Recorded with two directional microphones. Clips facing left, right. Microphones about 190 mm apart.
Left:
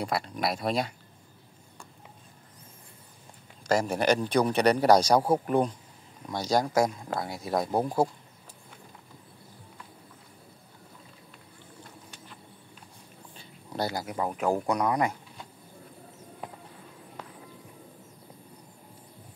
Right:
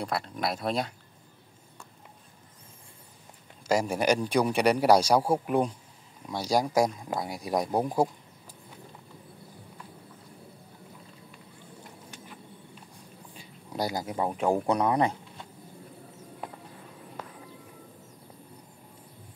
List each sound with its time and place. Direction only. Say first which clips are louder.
0.0 s speech: left 1 dB; centre (ahead or behind)
3.6 s a man's voice: even; 10° right (ahead or behind)
13.4 s dog: even; 10° right (ahead or behind)
14.3 s speech: right 1 dB; 30° right (ahead or behind)